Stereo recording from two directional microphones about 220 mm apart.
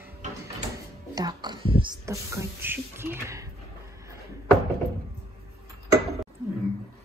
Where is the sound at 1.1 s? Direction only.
20° right (ahead or behind).